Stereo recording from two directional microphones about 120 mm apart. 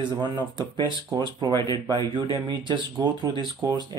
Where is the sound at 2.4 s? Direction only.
40° right (ahead or behind).